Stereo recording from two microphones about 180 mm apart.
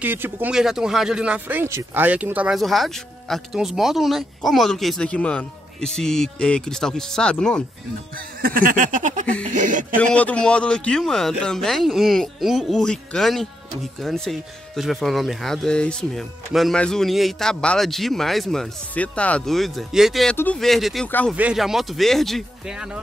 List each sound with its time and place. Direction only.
0.0 s speech: 10° right (ahead or behind); by 7.6 s 5° left (ahead or behind)
8.4 s a sound: 50° right (ahead or behind)
9.9 s speech: 5° left (ahead or behind)
21.4 s speech: 5° right (ahead or behind)